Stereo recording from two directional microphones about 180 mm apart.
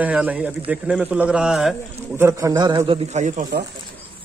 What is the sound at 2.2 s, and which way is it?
A man's voice, 15° right (ahead or behind).